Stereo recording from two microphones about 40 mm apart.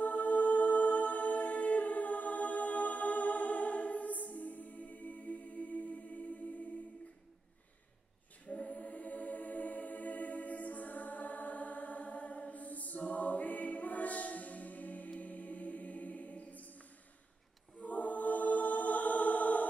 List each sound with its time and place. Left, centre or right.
0.0 s music: left
8.5 s choir: left
17.8 s choir: left